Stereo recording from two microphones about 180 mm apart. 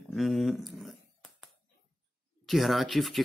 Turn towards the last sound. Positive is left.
turn(degrees=0)  # may be behind; listen again after turning